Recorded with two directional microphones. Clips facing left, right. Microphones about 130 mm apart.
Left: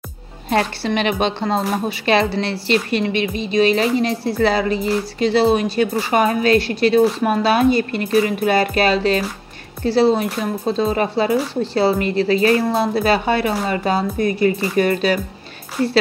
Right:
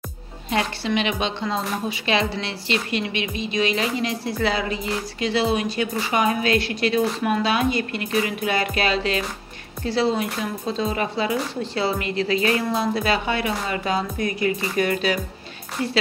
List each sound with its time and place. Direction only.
0.5 s a woman's voice: 50° left (ahead or behind); by 5.5 s 30° left (ahead or behind)
5.5 s a woman's voice: 45° left (ahead or behind)
7.2 s a woman's voice: 45° left (ahead or behind)
12.6 s speech: 55° left (ahead or behind)
12.9 s a woman's voice: 40° left (ahead or behind)